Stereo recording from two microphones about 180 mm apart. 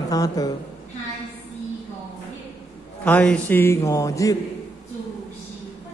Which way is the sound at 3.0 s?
5° left (ahead or behind).